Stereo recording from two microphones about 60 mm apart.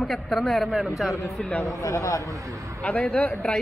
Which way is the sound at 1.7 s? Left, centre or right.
Left.